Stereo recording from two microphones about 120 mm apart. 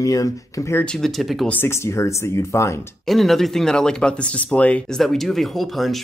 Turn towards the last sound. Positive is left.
turn(degrees=0)  # may be behind; listen again after turning